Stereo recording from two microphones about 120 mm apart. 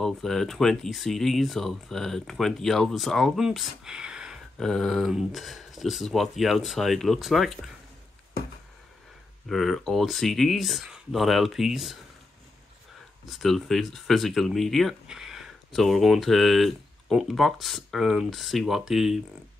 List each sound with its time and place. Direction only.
0.0 s speech: 5° left (ahead or behind)
9.5 s speech: centre (ahead or behind)
13.3 s speech: centre (ahead or behind)